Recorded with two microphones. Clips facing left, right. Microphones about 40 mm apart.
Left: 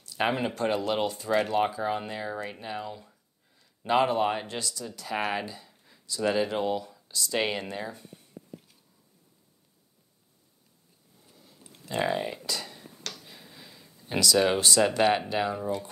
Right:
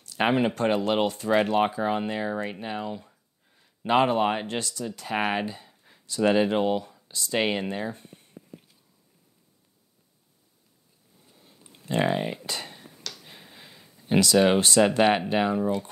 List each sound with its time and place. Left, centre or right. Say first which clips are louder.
0.2 s speech: right 4 dB; right
7.3 s speech: right 4 dB; right
11.9 s speech: right 3 dB; right
12.4 s a sound: even; right
14.4 s speech: right 3 dB; right